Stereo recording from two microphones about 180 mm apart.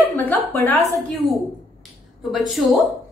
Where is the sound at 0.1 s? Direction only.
10° left (ahead or behind).